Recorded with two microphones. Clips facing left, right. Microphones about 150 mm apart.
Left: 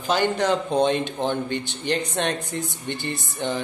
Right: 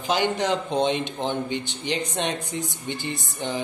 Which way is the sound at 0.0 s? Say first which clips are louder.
Left 2 dB; 15° right (ahead or behind).